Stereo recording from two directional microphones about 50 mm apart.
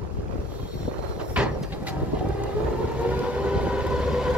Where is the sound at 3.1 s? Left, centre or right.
Right.